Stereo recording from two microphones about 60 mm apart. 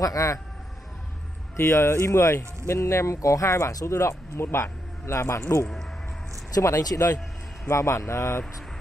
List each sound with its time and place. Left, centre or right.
0.0 s a man's voice: left
1.6 s a man's voice: left
6.5 s speech: left
6.9 s a man's voice: left
7.6 s speech: left